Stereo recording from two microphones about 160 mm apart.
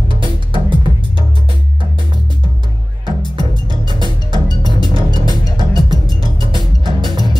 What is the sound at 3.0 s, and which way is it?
Music, 30° right (ahead or behind).